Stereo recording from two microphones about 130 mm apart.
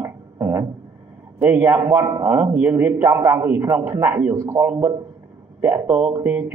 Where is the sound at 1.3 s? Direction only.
15° right (ahead or behind).